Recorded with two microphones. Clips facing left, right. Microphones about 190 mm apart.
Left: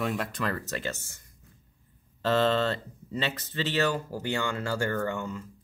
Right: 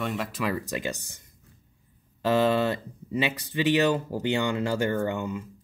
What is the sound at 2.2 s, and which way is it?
Speech, 10° right (ahead or behind).